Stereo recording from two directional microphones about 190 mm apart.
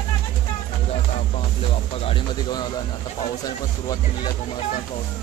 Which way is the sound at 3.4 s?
20° left (ahead or behind).